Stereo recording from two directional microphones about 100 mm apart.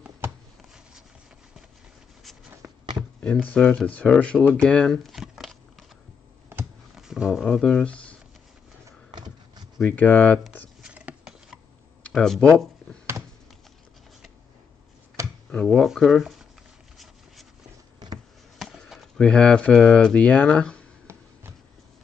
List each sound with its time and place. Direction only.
2.6 s a sound: 25° right (ahead or behind)
3.4 s speech: 10° left (ahead or behind)
7.0 s a sound: 5° right (ahead or behind)
7.4 s speech: 5° left (ahead or behind)
9.8 s speech: 20° left (ahead or behind)
10.8 s a sound: 10° right (ahead or behind)
12.2 s speech: 10° left (ahead or behind)
15.5 s speech: 5° left (ahead or behind)
18.6 s speech: centre (ahead or behind)